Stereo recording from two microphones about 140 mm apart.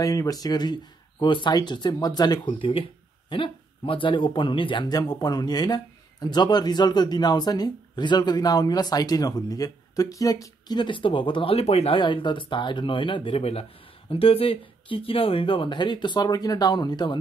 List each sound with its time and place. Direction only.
0.0 s speech: 25° left (ahead or behind)